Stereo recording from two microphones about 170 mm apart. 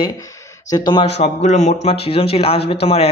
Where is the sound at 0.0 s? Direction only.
20° left (ahead or behind).